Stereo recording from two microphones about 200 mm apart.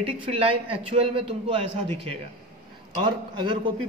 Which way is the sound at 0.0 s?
30° right (ahead or behind).